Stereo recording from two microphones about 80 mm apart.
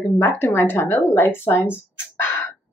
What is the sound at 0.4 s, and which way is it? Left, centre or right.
A woman's voice, left.